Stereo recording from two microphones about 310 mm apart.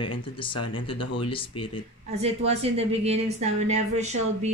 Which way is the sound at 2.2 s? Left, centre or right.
Centre.